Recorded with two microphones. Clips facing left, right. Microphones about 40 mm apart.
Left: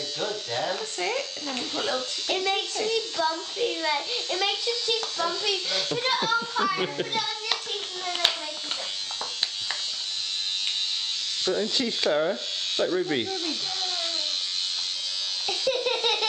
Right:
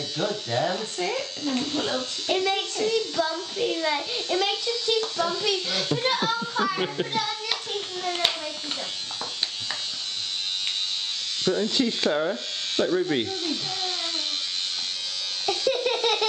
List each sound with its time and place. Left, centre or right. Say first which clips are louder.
0.2 s a child's voice: right 4 dB; centre
8.0 s hands: even; centre
11.4 s a child's voice: right 3 dB; centre
15.7 s baby laughter: left 1 dB; centre